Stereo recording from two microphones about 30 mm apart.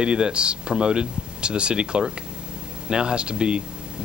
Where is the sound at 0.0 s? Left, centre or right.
Right.